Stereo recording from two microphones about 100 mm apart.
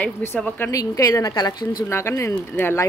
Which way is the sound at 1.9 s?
25° left (ahead or behind).